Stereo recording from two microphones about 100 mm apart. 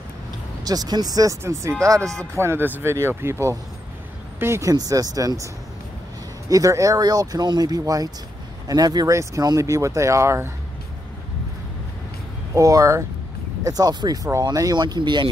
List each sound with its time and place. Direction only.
0.7 s speech: 40° right (ahead or behind)
1.4 s speech: 30° right (ahead or behind)
6.5 s speech: 35° right (ahead or behind)
12.5 s speech: 30° right (ahead or behind); by 15.2 s 50° right (ahead or behind)